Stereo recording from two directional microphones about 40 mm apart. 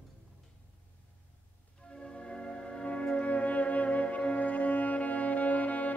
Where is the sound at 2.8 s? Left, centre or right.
Left.